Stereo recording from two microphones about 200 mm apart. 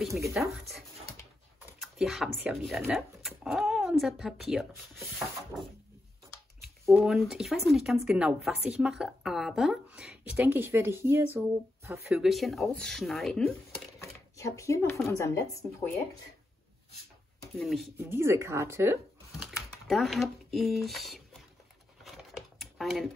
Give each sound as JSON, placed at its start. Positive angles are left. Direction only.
{"t": 0.1, "sound": "speech", "side_deg": -15}
{"t": 0.4, "sound": "speech", "side_deg": 0}
{"t": 6.6, "sound": "speech", "side_deg": 0}
{"t": 12.1, "sound": "speech", "side_deg": 0}
{"t": 14.0, "sound": "a sound", "side_deg": 15}
{"t": 15.0, "sound": "a woman's voice", "side_deg": 15}
{"t": 17.6, "sound": "speech", "side_deg": 0}
{"t": 17.9, "sound": "speech", "side_deg": -10}
{"t": 19.4, "sound": "a sound", "side_deg": 0}
{"t": 22.0, "sound": "typing", "side_deg": 0}